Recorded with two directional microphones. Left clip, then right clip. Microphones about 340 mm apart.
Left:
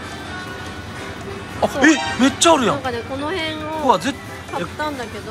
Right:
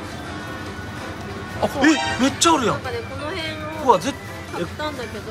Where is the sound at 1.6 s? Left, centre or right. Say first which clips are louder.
Left 3 dB; centre.